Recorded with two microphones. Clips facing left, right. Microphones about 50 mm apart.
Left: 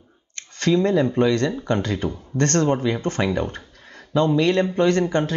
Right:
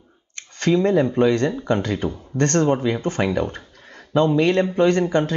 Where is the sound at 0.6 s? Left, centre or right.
Right.